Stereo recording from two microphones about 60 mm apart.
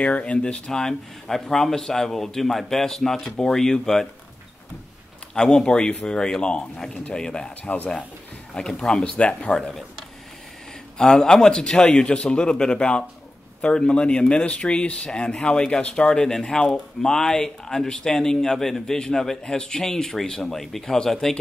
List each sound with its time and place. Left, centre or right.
0.0 s a man's voice: centre
5.3 s a man's voice: centre
9.1 s speech: left
9.6 s speech: centre
11.0 s a man's voice: centre